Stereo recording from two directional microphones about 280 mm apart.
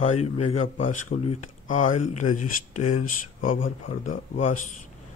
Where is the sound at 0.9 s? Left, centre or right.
Left.